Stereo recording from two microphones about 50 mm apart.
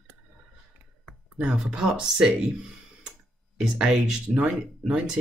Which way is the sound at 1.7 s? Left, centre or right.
Centre.